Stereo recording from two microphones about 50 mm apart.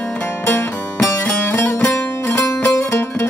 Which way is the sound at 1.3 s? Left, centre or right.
Left.